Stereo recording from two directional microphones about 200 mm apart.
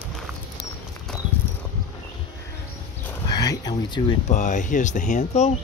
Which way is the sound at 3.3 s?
20° left (ahead or behind).